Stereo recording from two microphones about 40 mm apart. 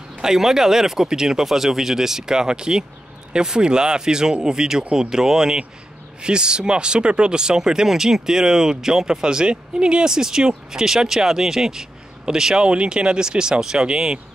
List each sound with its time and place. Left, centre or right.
0.2 s speech: centre